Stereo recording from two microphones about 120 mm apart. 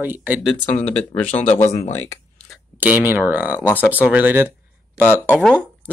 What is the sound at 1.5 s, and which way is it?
Speech, 70° left (ahead or behind).